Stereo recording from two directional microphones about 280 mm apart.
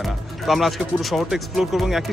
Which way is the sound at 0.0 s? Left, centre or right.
Centre.